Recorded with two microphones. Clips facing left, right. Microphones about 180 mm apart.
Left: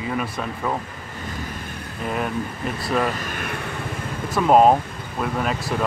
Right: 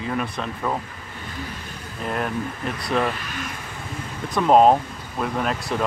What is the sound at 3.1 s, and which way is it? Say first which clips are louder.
Vehicle: left 4 dB; 50° left (ahead or behind).